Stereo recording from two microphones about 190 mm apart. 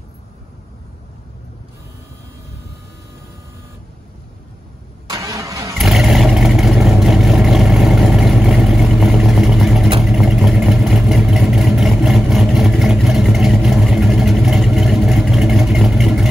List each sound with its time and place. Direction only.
5.1 s vehicle: 15° right (ahead or behind)
5.8 s vehicle: centre (ahead or behind)